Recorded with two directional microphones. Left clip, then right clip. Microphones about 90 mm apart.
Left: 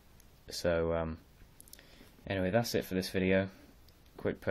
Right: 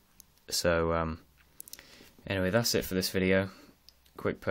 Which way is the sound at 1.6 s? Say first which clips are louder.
Right 6 dB; 35° right (ahead or behind).